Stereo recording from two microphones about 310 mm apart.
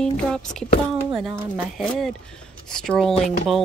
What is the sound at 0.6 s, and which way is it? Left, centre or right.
Speech, centre.